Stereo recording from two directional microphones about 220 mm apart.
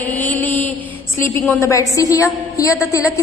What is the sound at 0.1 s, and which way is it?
Mantra, 10° left (ahead or behind).